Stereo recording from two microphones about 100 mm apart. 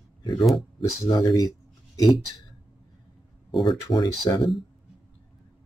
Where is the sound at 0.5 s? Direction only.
40° left (ahead or behind).